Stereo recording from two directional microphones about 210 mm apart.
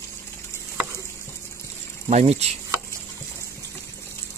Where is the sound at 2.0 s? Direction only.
35° right (ahead or behind).